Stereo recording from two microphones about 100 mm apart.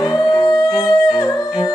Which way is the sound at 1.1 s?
40° left (ahead or behind).